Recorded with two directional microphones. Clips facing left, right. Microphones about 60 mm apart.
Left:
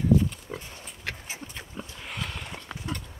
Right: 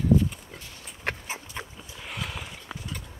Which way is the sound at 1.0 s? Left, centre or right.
Right.